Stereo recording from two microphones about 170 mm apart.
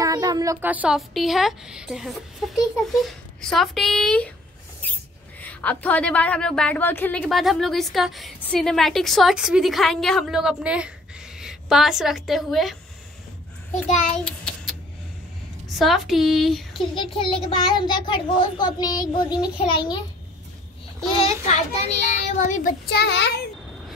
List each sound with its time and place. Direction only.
0.0 s a woman's voice: 20° right (ahead or behind); by 4.3 s 5° left (ahead or behind)
5.4 s a woman's voice: 10° left (ahead or behind)
13.8 s a child's voice: 45° left (ahead or behind)
14.2 s a sound: centre (ahead or behind)
15.8 s a woman's voice: centre (ahead or behind)
16.9 s a child's voice: 30° left (ahead or behind)
21.2 s a child's voice: 40° left (ahead or behind)
22.9 s a child's voice: 85° left